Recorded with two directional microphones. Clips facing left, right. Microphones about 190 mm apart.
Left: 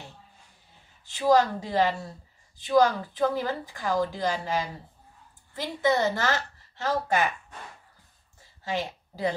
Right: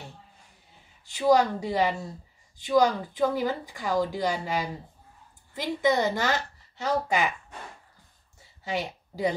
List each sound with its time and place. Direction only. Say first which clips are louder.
1.1 s speech: even; 15° right (ahead or behind)